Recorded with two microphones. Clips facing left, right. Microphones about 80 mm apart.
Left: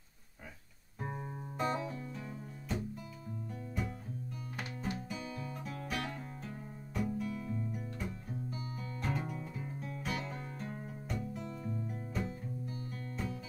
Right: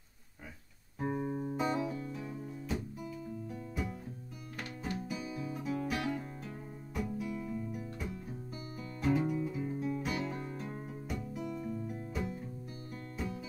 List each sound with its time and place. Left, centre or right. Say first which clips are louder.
1.0 s music: right 8 dB; centre
5.0 s music: right 3 dB; centre
11.5 s music: right 2 dB; left
11.9 s music: right 1 dB; centre